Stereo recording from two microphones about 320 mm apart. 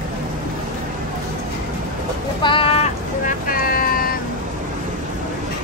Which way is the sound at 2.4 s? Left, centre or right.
Centre.